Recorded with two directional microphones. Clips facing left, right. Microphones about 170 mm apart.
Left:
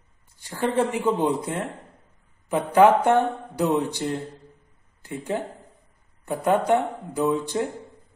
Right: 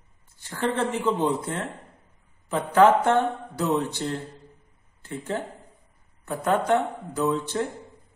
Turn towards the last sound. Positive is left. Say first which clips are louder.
# left 2 dB
turn(degrees=15)  # may be behind; listen again after turning